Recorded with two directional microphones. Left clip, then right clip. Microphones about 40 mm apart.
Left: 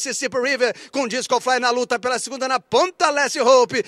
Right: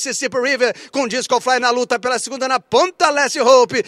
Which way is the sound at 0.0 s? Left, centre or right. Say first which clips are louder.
Right 3 dB; left.